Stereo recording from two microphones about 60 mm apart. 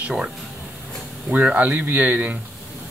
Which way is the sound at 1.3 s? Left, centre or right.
Right.